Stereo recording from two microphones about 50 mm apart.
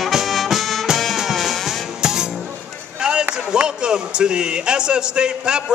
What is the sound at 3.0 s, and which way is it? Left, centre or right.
Run, centre.